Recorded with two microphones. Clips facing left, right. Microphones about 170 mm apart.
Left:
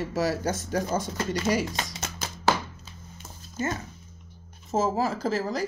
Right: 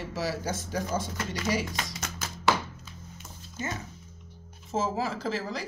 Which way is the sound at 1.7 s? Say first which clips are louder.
Left 2 dB; 30° left (ahead or behind).